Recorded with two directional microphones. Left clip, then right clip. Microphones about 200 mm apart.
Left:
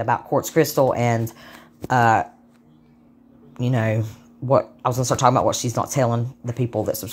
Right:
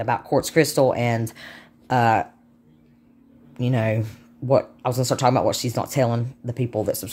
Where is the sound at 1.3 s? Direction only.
20° right (ahead or behind).